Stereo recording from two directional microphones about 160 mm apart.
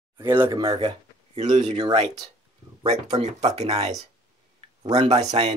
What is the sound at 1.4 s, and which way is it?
Speech, 45° right (ahead or behind).